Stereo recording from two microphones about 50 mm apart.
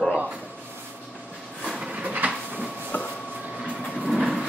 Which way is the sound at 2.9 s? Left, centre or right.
Left.